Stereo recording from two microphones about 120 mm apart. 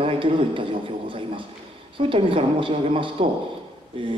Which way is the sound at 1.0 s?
45° right (ahead or behind).